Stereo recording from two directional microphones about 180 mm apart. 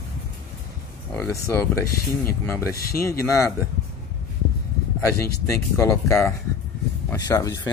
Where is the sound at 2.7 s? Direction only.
55° left (ahead or behind).